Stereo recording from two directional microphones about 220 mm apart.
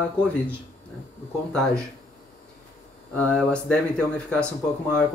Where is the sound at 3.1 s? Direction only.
5° left (ahead or behind).